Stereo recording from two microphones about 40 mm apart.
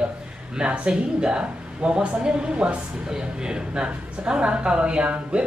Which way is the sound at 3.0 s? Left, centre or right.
Centre.